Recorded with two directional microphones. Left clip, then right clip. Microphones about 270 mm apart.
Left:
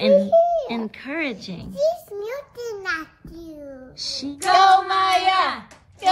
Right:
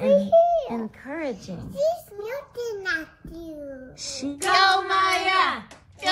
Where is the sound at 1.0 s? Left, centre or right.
Left.